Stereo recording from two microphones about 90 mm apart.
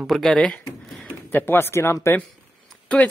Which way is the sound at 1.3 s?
25° left (ahead or behind).